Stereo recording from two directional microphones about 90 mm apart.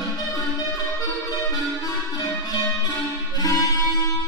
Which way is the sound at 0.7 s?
45° left (ahead or behind).